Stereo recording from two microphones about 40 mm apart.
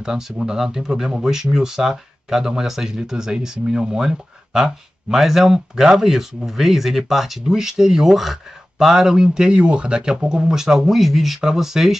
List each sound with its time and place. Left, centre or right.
0.0 s speech: centre
10.5 s speech: centre